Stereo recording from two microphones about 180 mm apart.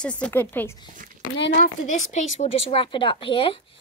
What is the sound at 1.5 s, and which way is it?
Speech, 40° left (ahead or behind).